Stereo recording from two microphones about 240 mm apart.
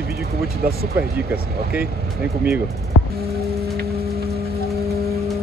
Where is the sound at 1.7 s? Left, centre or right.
Centre.